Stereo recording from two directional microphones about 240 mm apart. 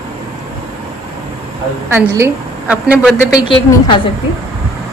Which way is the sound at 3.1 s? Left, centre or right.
Centre.